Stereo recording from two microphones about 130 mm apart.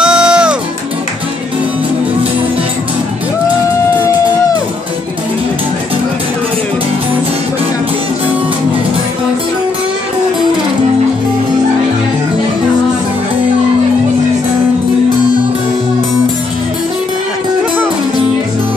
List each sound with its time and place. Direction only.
0.0 s music: 5° right (ahead or behind)